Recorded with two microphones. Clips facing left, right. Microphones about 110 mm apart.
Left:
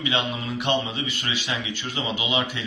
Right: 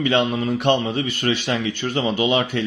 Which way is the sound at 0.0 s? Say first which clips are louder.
Right 8 dB; 50° right (ahead or behind).